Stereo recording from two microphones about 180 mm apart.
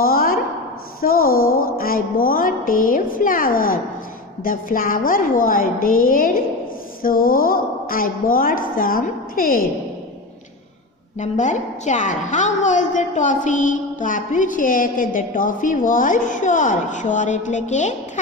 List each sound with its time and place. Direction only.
0.0 s a sound: 55° left (ahead or behind)
1.0 s a woman's voice: 55° left (ahead or behind)
11.1 s a woman's voice: 40° left (ahead or behind)